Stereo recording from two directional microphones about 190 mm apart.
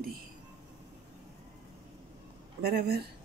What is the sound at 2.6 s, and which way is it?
Speech, 55° right (ahead or behind).